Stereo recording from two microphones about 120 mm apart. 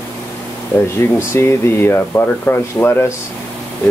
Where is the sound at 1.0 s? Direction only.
20° left (ahead or behind).